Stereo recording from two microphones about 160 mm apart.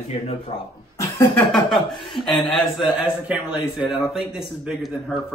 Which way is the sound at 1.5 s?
Centre (ahead or behind).